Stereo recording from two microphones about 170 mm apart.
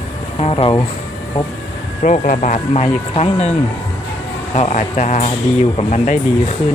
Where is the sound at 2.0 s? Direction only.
45° left (ahead or behind).